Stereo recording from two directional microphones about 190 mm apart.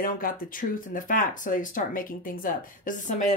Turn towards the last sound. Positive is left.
turn(degrees=45)  # may be behind; listen again after turning